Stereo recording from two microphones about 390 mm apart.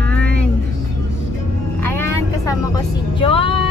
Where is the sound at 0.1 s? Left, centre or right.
Centre.